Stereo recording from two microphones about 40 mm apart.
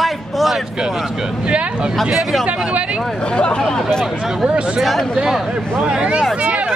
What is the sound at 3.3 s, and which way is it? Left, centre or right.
Speech, left.